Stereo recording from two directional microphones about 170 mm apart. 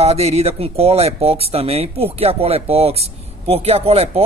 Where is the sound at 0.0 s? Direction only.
40° right (ahead or behind).